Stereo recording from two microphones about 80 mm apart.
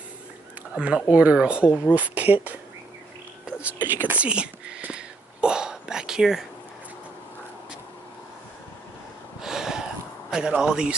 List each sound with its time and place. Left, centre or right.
0.7 s a man's voice: centre
9.4 s a sound: centre
10.3 s a man's voice: centre